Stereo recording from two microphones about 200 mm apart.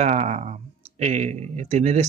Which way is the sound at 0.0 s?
35° right (ahead or behind).